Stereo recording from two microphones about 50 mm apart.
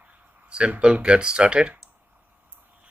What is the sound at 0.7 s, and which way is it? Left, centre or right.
Speech, right.